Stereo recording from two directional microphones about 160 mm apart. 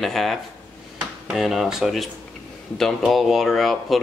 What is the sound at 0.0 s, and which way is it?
Speech, centre (ahead or behind).